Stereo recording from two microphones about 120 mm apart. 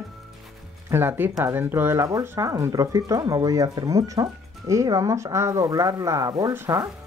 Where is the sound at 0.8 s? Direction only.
20° right (ahead or behind).